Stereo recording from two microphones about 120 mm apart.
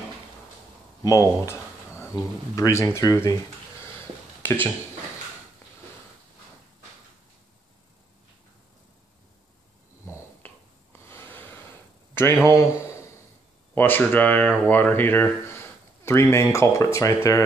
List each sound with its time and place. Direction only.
1.0 s speech: 30° left (ahead or behind)
4.4 s speech: 15° left (ahead or behind)
10.0 s a sound: 20° left (ahead or behind)
12.4 s speech: 25° left (ahead or behind)